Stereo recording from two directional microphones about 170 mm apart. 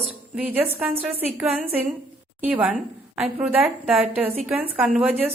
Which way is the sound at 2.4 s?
10° right (ahead or behind).